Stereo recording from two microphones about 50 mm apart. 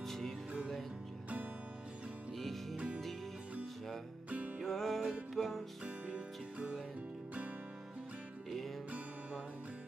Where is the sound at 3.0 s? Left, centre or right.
Centre.